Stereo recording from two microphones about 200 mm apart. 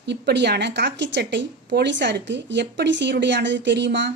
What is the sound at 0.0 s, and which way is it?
A woman's voice, 60° right (ahead or behind).